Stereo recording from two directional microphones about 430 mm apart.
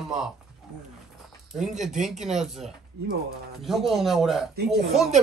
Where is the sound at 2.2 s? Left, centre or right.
Centre.